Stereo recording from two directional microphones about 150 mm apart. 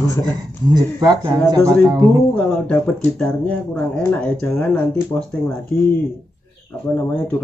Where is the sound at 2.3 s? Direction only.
5° left (ahead or behind).